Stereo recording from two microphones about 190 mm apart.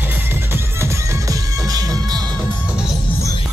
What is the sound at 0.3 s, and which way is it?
Music, 15° right (ahead or behind).